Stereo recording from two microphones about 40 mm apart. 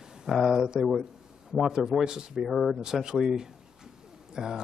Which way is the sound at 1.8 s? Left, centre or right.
Centre.